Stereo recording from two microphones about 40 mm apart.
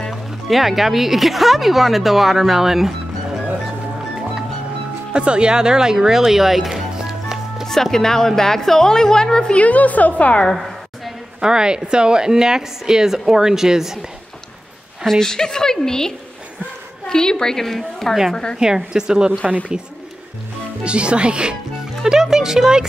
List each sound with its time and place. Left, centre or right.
0.1 s speech: centre
5.1 s speech: right; by 6.7 s centre
6.7 s music: centre
7.6 s a woman's voice: centre; by 9.7 s left
9.7 s a woman's voice: left
11.4 s speech: centre
15.0 s a woman's voice: centre
18.3 s speech: centre
18.6 s speech: centre
20.8 s speech: right
22.0 s speech: centre